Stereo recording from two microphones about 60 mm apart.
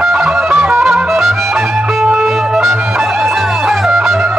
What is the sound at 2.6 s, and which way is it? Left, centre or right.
Music, centre.